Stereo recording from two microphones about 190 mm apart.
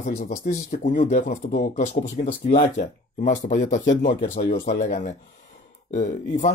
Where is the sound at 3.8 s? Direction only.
70° left (ahead or behind).